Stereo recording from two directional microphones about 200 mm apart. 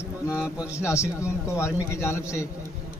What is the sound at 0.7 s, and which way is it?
Speech, 15° left (ahead or behind).